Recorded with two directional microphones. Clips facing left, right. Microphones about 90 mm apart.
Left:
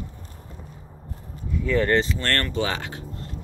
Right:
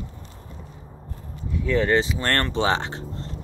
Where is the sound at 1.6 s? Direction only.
5° right (ahead or behind).